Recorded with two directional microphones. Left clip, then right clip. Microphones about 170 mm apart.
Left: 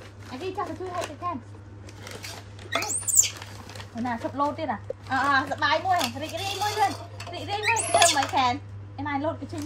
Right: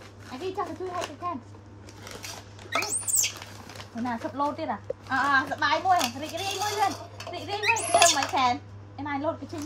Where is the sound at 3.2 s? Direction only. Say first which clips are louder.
Even; centre (ahead or behind).